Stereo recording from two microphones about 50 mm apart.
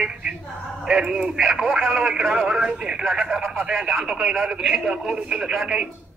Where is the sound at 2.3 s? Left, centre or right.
Centre.